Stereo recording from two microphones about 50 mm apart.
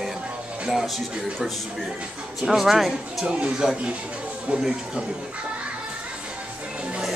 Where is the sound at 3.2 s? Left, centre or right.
Centre.